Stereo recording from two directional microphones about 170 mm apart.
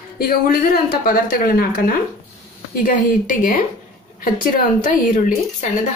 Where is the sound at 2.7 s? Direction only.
50° left (ahead or behind).